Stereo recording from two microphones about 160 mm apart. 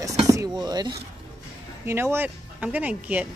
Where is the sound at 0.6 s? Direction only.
25° right (ahead or behind).